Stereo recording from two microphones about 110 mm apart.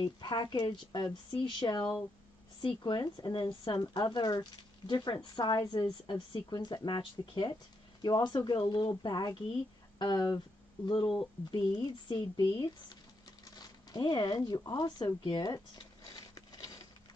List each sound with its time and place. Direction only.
0.0 s speech: 40° left (ahead or behind)
11.5 s speech: 40° left (ahead or behind)
16.1 s a sound: 35° left (ahead or behind)